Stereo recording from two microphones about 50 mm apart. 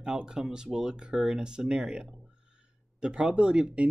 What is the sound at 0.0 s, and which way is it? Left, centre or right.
Speech, centre.